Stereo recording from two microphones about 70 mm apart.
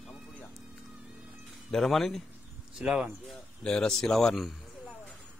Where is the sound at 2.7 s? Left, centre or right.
Centre.